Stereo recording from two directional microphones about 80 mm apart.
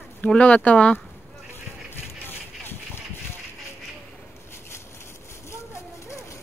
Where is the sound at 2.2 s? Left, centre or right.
Left.